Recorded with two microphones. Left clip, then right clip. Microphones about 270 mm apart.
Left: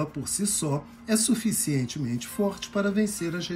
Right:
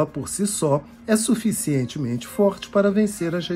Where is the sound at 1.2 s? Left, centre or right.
Centre.